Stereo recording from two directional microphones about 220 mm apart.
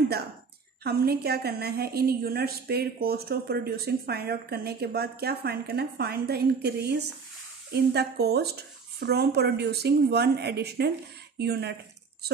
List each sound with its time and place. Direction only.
0.8 s a woman's voice: 45° right (ahead or behind)